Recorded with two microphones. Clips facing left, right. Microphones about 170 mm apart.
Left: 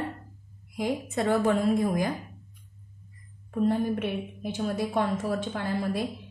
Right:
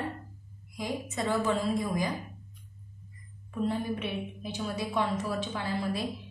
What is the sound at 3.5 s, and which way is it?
A woman's voice, 50° left (ahead or behind).